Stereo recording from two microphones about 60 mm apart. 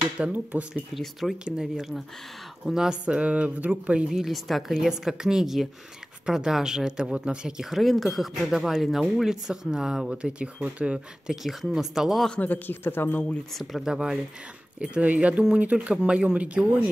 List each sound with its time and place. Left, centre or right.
0.3 s speech: right
1.4 s speech: centre
4.1 s speech: centre
11.4 s speech: centre
12.4 s speech: left
13.5 s speech: centre
13.8 s speech: centre